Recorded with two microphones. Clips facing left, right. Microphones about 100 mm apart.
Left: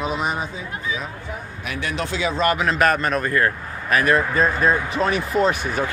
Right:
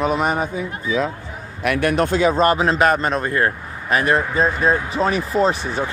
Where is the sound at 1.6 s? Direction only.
55° right (ahead or behind).